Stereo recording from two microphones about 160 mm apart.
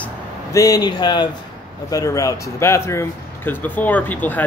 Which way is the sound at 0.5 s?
20° left (ahead or behind).